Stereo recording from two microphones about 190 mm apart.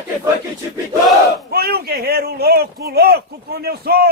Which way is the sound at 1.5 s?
55° right (ahead or behind).